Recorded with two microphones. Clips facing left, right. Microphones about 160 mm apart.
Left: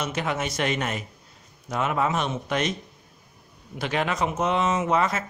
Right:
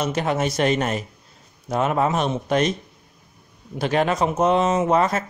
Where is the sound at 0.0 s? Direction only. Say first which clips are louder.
Right 5 dB; 35° right (ahead or behind).